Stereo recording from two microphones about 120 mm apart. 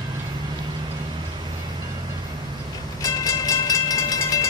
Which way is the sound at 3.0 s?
30° left (ahead or behind).